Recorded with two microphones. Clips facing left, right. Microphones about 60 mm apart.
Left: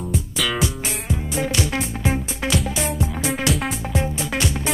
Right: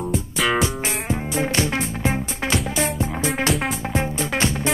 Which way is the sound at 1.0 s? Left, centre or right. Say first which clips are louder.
Even; right.